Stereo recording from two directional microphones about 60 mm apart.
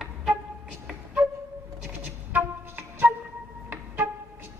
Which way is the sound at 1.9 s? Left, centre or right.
Right.